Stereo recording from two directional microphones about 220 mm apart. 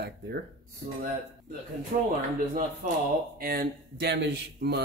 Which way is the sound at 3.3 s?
40° right (ahead or behind).